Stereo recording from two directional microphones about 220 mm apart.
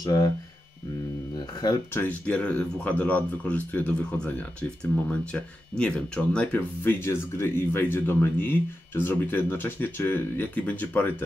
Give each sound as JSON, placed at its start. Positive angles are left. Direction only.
{"t": 0.0, "sound": "speech", "side_deg": 15}
{"t": 1.6, "sound": "speech", "side_deg": 15}